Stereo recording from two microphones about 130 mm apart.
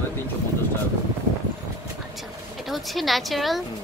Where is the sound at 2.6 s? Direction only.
Centre (ahead or behind).